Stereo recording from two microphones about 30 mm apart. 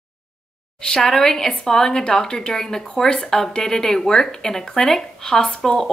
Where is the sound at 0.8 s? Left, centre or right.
Left.